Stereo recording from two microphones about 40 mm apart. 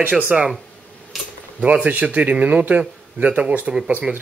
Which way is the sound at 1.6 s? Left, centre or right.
Right.